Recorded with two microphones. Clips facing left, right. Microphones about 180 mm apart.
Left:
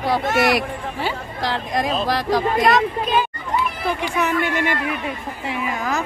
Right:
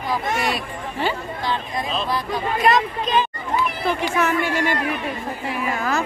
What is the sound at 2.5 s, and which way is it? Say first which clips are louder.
Speech: left 2 dB; 10° left (ahead or behind).